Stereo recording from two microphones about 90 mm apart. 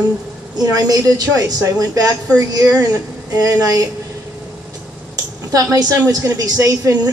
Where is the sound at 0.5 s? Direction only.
45° right (ahead or behind).